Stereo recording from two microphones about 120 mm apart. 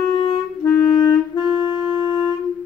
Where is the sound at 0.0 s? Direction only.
35° left (ahead or behind).